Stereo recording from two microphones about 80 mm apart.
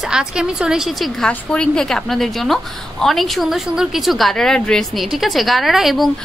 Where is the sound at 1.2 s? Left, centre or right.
Centre.